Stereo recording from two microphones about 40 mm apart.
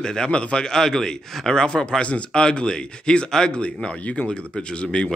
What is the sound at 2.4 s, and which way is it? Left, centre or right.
A man's voice, left.